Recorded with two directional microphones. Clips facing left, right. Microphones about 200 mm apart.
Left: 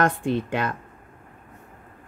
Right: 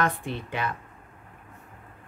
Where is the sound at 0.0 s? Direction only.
45° left (ahead or behind).